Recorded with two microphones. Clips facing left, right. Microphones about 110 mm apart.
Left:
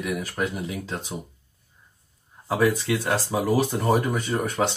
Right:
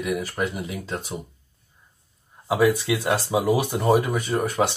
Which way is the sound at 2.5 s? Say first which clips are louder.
Right 2 dB; 10° right (ahead or behind).